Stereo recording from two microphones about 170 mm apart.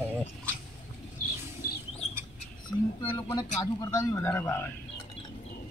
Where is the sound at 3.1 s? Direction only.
25° left (ahead or behind).